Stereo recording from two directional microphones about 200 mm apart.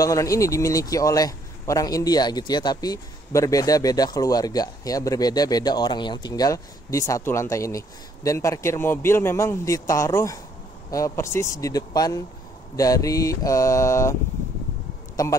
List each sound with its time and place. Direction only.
0.0 s speech: 15° left (ahead or behind)
15.2 s speech: 15° left (ahead or behind)